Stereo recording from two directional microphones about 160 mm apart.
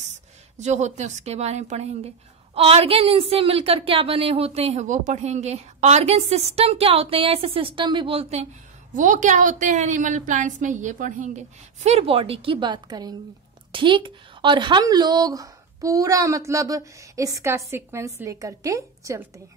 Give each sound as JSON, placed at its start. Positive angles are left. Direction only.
{"t": 0.6, "sound": "a woman's voice", "side_deg": -45}
{"t": 8.9, "sound": "a woman's voice", "side_deg": -55}